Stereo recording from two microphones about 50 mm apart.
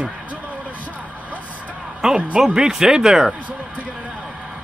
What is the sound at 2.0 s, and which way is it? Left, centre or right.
Speech, centre.